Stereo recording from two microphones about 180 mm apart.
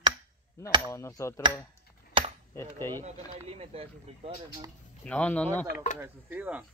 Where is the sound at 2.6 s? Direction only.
10° left (ahead or behind).